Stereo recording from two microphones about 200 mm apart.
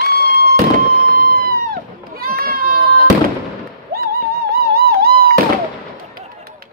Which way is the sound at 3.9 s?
50° right (ahead or behind).